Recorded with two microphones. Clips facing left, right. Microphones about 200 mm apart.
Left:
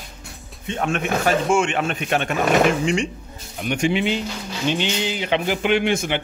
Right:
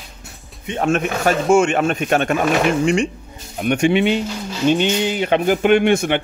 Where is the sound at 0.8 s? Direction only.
40° right (ahead or behind).